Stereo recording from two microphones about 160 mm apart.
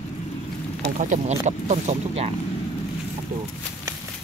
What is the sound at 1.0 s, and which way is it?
Speech, 50° right (ahead or behind).